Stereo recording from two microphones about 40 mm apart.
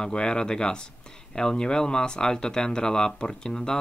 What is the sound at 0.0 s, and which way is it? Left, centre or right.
Speech, left.